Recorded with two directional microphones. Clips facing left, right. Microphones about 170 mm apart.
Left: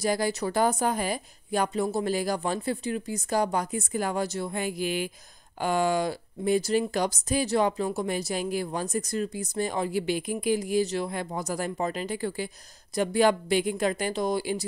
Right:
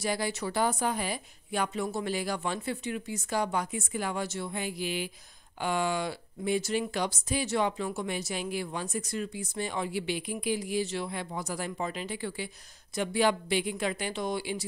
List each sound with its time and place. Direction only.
0.0 s speech: 40° left (ahead or behind)